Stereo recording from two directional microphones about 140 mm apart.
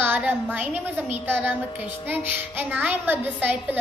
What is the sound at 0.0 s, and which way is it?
A woman's voice, 15° right (ahead or behind).